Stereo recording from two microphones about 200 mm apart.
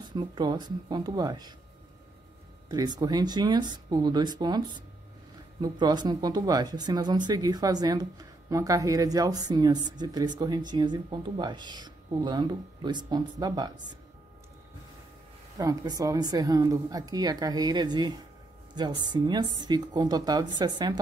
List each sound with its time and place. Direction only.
0.1 s speech: 20° right (ahead or behind)
2.7 s a woman's voice: 20° right (ahead or behind)
15.5 s speech: 20° right (ahead or behind)